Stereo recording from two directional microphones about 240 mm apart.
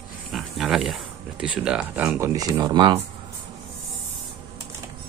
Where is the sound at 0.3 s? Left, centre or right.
Centre.